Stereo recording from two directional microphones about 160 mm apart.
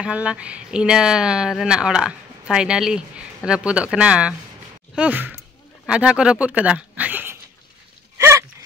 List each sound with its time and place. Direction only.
0.0 s speech: 5° right (ahead or behind)
8.2 s gasp: 15° right (ahead or behind)